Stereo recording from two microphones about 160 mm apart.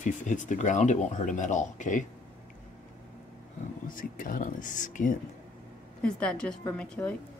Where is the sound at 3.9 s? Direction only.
60° left (ahead or behind).